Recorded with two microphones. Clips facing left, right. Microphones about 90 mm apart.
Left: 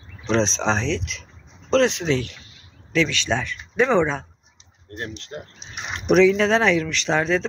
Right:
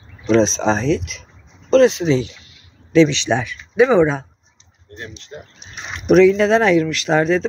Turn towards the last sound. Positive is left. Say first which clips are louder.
# right 5 dB
turn(degrees=-5)  # may be behind; listen again after turning